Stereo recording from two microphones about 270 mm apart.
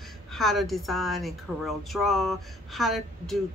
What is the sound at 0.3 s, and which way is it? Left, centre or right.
Speech, centre.